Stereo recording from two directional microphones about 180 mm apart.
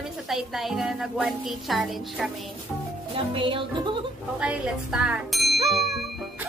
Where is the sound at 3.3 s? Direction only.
30° right (ahead or behind).